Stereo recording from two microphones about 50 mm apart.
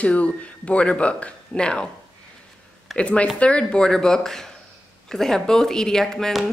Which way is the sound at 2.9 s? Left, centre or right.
Left.